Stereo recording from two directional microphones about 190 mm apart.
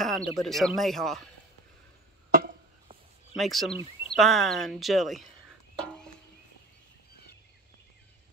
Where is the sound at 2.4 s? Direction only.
45° right (ahead or behind).